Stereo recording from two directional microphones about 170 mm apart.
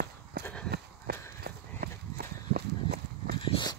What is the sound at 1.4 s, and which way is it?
Horse, 65° right (ahead or behind).